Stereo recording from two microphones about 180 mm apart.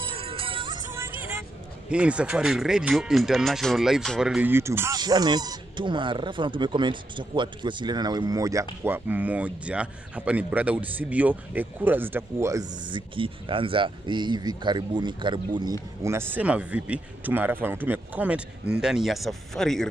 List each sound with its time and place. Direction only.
0.0 s music: 30° right (ahead or behind)
0.9 s vehicle: 10° right (ahead or behind)
1.9 s speech: 5° right (ahead or behind); by 15.7 s 25° right (ahead or behind)
16.0 s speech: 15° right (ahead or behind); by 19.9 s centre (ahead or behind)